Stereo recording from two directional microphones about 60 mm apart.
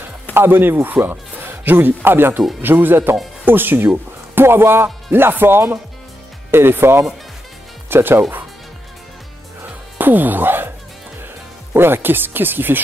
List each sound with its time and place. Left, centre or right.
0.0 s speech: right
9.6 s music: right
11.7 s speech: right